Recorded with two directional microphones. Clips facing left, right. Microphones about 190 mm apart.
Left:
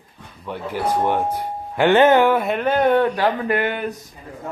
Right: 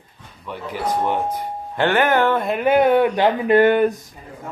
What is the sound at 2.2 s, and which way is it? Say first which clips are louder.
Speech: left 2 dB; 10° left (ahead or behind).